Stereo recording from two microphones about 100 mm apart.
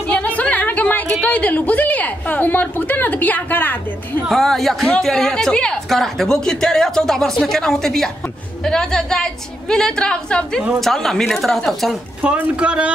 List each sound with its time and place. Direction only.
0.1 s a sound: 15° left (ahead or behind)
1.2 s a woman's voice: 15° left (ahead or behind)
4.3 s a woman's voice: centre (ahead or behind)
12.2 s speech: 10° right (ahead or behind)